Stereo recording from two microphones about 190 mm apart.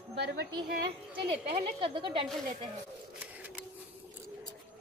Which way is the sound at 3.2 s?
10° right (ahead or behind).